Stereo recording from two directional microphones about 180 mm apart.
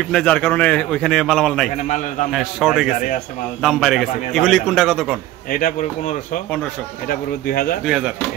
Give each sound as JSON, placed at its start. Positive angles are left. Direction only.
{"t": 0.1, "sound": "a man's voice", "side_deg": 5}
{"t": 5.5, "sound": "speech", "side_deg": 50}
{"t": 7.1, "sound": "a man's voice", "side_deg": 55}
{"t": 7.8, "sound": "a man's voice", "side_deg": -5}